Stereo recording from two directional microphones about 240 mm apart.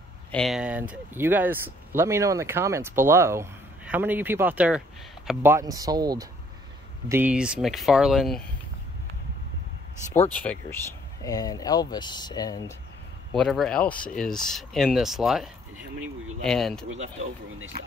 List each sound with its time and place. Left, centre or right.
0.3 s speech: centre
10.3 s speech: centre
13.3 s speech: centre
17.7 s speech: right